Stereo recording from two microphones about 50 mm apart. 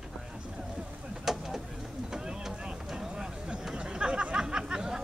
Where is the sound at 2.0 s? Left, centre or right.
Centre.